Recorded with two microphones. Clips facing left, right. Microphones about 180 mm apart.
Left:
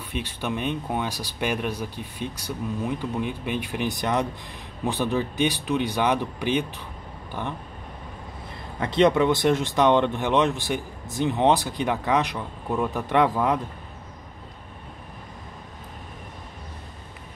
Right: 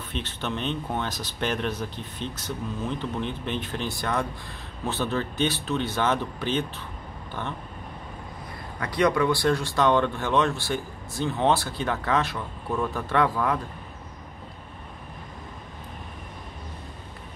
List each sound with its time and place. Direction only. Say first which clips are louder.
0.1 s speech: left 2 dB; 10° left (ahead or behind)
8.7 s speech: left 4 dB; 25° left (ahead or behind)